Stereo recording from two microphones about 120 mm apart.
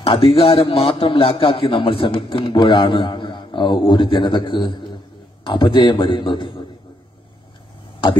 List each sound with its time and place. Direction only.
0.0 s a man's voice: 45° left (ahead or behind)